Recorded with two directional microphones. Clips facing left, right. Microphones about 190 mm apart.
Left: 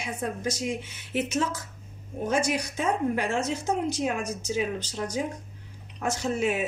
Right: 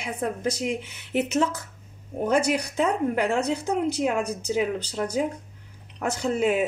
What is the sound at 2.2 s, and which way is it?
Speech, 60° right (ahead or behind).